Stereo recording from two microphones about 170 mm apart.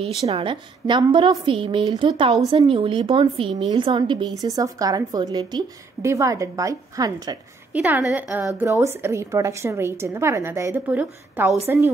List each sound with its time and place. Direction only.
0.3 s a woman's voice: 30° right (ahead or behind)
7.7 s a woman's voice: 10° right (ahead or behind)